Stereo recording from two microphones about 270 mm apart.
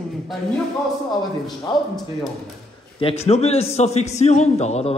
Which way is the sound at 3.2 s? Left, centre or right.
Left.